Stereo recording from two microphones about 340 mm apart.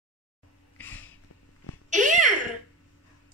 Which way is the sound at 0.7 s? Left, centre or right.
Centre.